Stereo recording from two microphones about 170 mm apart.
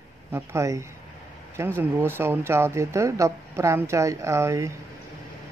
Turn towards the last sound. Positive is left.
turn(degrees=-15)  # may be behind; listen again after turning